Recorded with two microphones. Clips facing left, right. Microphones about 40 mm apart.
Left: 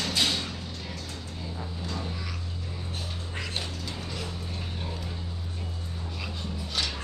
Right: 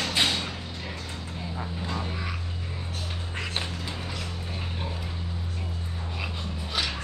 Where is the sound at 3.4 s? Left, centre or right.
Right.